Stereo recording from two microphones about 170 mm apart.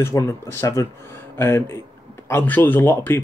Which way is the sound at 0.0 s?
15° left (ahead or behind).